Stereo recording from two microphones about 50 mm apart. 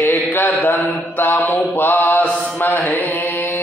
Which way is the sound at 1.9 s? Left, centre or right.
Left.